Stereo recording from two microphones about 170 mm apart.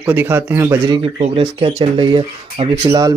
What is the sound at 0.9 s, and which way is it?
Speech, 30° right (ahead or behind).